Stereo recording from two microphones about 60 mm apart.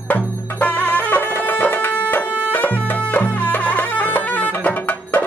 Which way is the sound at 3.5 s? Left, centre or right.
Left.